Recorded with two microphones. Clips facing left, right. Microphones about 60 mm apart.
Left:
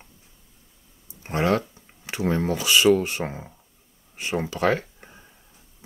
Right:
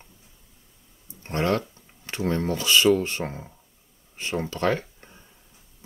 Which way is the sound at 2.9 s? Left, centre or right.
Centre.